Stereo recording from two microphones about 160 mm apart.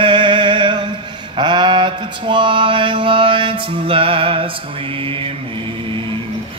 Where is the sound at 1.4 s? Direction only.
30° right (ahead or behind).